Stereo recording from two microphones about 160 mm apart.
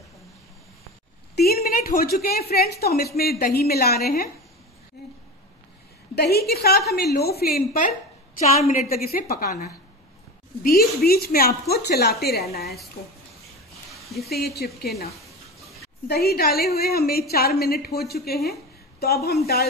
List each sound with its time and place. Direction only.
1.3 s a woman's voice: 75° left (ahead or behind)
6.1 s a woman's voice: 90° left
6.5 s a woman's voice: 80° left
6.9 s a woman's voice: 90° left
7.3 s a woman's voice: 75° left (ahead or behind)
8.4 s a woman's voice: 45° left (ahead or behind)
8.8 s a woman's voice: 70° left (ahead or behind)
10.6 s a woman's voice: 70° left (ahead or behind)
13.9 s a sound: centre (ahead or behind)
14.3 s a woman's voice: 80° left
16.1 s a woman's voice: 75° left (ahead or behind)